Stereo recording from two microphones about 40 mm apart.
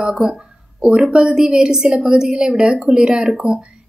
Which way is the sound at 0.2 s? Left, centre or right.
Centre.